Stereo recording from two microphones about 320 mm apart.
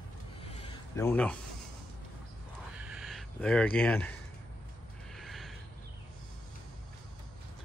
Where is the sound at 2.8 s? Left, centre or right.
Centre.